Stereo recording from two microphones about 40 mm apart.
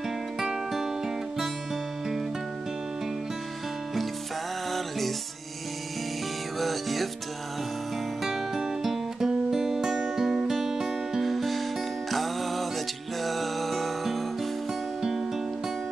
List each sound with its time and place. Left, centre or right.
0.7 s music: centre
4.7 s music: centre
6.6 s music: centre
8.2 s music: centre
15.0 s music: centre